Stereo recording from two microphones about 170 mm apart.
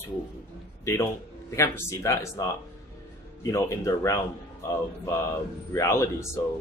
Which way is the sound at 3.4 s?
15° left (ahead or behind).